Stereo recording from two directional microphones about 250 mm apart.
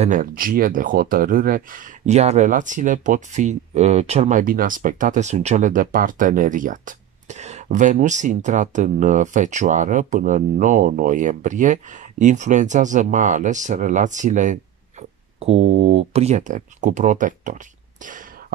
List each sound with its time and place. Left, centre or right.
0.0 s speech: right